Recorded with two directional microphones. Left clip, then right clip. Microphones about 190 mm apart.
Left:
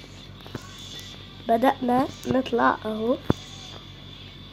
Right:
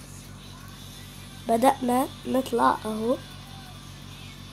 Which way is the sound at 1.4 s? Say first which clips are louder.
Even; 10° right (ahead or behind).